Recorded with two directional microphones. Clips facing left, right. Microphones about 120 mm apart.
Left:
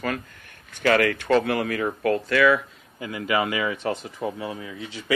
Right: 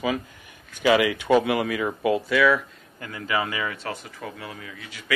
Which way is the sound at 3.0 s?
15° left (ahead or behind).